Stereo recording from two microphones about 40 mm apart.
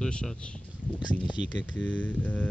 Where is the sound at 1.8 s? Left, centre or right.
Left.